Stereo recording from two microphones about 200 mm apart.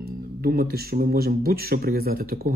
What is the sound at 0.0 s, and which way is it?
Speech, 50° right (ahead or behind).